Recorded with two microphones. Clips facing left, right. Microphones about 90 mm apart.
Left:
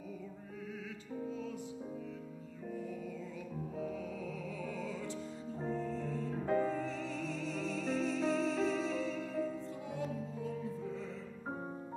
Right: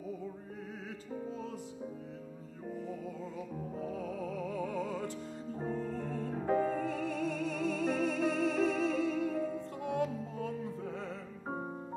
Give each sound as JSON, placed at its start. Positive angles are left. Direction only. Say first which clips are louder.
{"t": 3.8, "sound": "music", "louder": "right 4 dB", "side_deg": -45}
{"t": 6.4, "sound": "music", "louder": "right 2 dB", "side_deg": -20}
{"t": 6.7, "sound": "music", "louder": "right 4 dB", "side_deg": -55}